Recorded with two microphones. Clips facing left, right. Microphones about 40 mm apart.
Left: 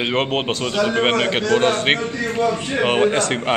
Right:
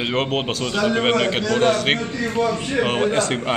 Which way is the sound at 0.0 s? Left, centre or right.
Left.